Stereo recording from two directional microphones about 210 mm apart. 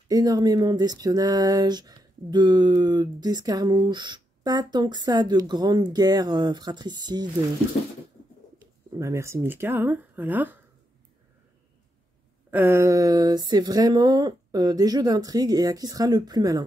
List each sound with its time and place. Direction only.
0.1 s speech: 20° right (ahead or behind)
8.9 s speech: 15° right (ahead or behind)
12.4 s speech: 10° right (ahead or behind)